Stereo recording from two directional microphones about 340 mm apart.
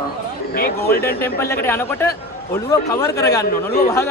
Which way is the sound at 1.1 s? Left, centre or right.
Centre.